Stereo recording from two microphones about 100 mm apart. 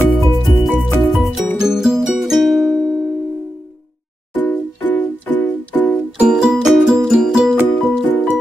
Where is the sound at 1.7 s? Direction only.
5° right (ahead or behind).